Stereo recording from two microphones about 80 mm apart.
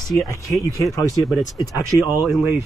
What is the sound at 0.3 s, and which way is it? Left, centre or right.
Speech, left.